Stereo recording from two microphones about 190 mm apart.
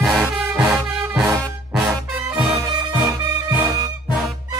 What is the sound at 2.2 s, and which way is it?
Music, 5° right (ahead or behind).